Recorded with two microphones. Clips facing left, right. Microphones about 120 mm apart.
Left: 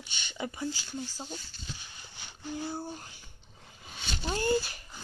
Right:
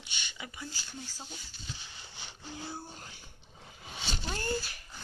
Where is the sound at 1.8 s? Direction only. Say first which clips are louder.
Even; 25° right (ahead or behind).